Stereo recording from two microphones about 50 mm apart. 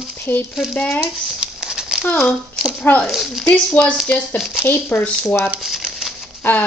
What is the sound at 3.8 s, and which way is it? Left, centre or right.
Speech, left.